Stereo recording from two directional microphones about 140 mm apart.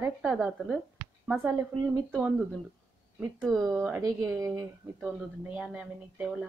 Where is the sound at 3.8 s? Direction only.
20° right (ahead or behind).